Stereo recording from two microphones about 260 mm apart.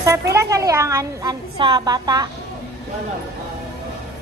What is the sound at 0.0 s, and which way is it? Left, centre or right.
A woman's voice, centre.